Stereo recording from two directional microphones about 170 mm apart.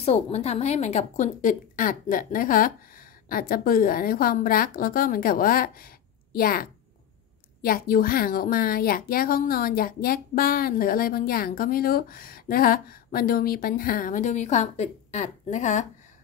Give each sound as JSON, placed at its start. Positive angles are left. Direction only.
{"t": 0.0, "sound": "a woman's voice", "side_deg": 40}